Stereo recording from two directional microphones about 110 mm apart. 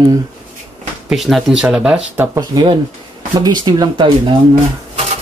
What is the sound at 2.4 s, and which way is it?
Speech, 40° right (ahead or behind).